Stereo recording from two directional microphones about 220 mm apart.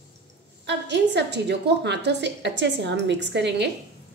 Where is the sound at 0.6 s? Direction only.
50° right (ahead or behind).